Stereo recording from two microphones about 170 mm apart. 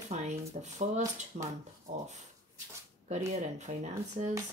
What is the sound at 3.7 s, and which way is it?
Speech, 40° right (ahead or behind).